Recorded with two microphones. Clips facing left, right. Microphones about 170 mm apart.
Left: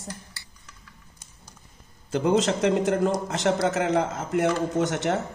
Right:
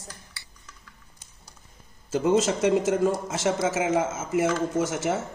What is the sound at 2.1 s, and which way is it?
A man's voice, centre (ahead or behind).